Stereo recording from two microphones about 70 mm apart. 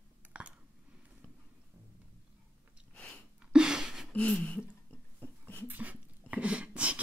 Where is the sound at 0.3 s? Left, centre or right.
Centre.